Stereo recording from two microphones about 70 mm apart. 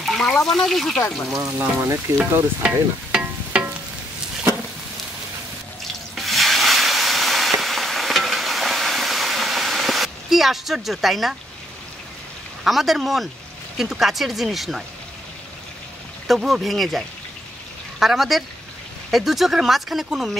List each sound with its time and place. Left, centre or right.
0.0 s a sound: centre
0.5 s speech: centre
1.9 s speech: right
2.6 s music: centre
6.1 s a sound: centre
12.6 s speech: centre
16.3 s speech: centre